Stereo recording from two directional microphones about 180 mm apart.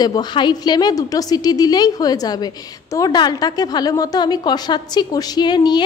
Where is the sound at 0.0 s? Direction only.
25° left (ahead or behind).